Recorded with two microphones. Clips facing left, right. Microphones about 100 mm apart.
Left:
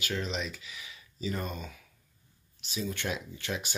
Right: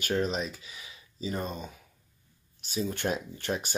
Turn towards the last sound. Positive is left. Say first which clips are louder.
# right 4 dB
turn(degrees=-40)  # may be behind; listen again after turning